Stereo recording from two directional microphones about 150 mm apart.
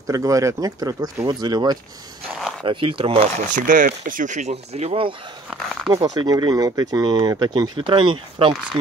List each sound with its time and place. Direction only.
0.0 s speech: 20° right (ahead or behind)
3.3 s speech: 60° right (ahead or behind); by 5.1 s 40° right (ahead or behind)
5.5 s speech: centre (ahead or behind)
6.1 s speech: 25° right (ahead or behind)